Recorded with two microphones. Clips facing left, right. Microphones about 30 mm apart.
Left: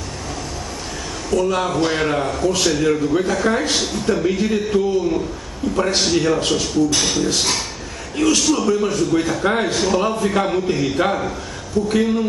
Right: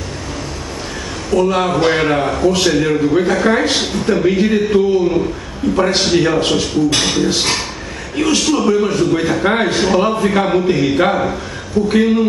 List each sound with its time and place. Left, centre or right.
1.3 s a man's voice: right